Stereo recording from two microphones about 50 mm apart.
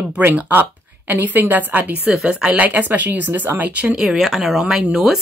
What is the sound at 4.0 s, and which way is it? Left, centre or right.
Speech, centre.